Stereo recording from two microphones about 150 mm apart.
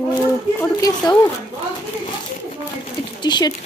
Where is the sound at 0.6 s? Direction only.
25° left (ahead or behind).